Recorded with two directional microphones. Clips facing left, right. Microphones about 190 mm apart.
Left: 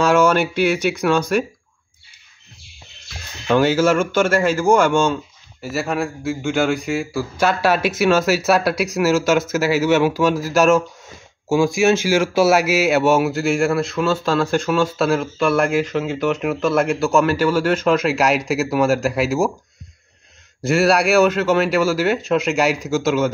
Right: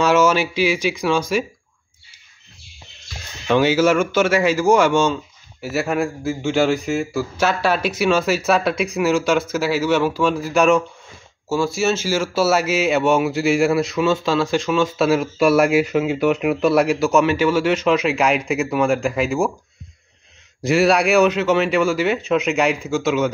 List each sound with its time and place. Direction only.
0.0 s a sound: 5° right (ahead or behind)
0.4 s speech: 60° left (ahead or behind)
1.3 s speech: centre (ahead or behind)
3.6 s a man's voice: 10° right (ahead or behind)
11.4 s a man's voice: 15° left (ahead or behind)
20.6 s speech: centre (ahead or behind)